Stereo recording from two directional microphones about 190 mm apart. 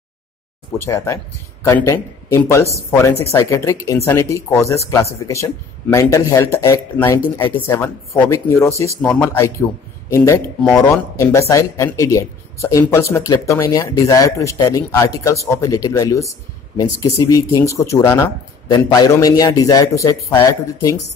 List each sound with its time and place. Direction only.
0.7 s a man's voice: 15° left (ahead or behind)